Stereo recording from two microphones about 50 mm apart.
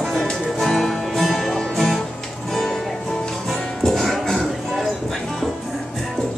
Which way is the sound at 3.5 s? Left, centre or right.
Centre.